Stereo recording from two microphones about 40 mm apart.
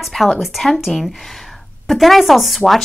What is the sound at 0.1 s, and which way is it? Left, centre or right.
Speech, centre.